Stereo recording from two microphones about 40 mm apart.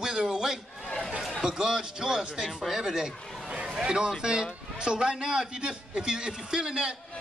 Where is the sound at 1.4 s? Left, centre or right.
Centre.